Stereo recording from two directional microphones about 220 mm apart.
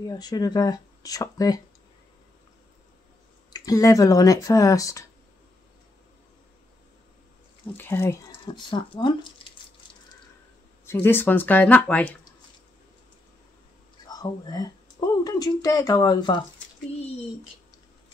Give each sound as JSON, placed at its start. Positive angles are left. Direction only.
{"t": 0.0, "sound": "speech", "side_deg": 15}
{"t": 3.5, "sound": "speech", "side_deg": 15}
{"t": 7.7, "sound": "speech", "side_deg": 10}
{"t": 10.9, "sound": "speech", "side_deg": 10}
{"t": 14.0, "sound": "speech", "side_deg": 15}